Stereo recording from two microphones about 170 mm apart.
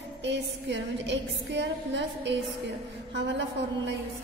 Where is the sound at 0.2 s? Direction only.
90° right.